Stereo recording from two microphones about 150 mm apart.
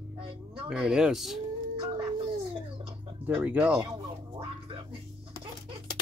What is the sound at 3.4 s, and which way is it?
Speech, 10° right (ahead or behind).